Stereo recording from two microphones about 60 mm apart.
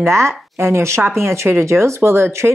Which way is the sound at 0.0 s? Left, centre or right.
Right.